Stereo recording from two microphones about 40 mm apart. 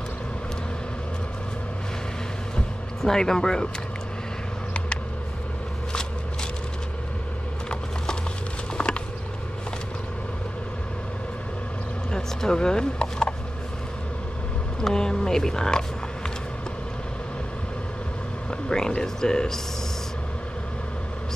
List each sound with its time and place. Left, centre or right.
3.0 s speech: centre
8.7 s mechanisms: left
12.1 s speech: centre
14.8 s speech: centre
18.5 s speech: left